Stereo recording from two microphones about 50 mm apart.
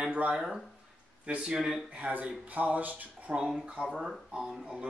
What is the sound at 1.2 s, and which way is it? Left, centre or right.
Speech, centre.